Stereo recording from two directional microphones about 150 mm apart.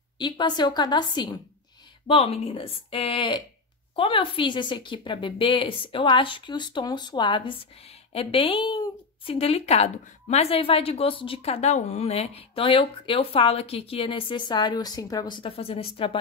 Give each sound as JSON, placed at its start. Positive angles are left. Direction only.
{"t": 0.2, "sound": "a woman's voice", "side_deg": 30}
{"t": 2.0, "sound": "a woman's voice", "side_deg": 40}